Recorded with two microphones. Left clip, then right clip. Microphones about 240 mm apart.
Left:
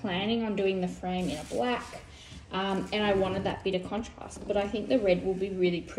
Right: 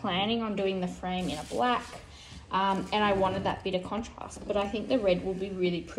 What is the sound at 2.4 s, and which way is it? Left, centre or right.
A woman's voice, centre.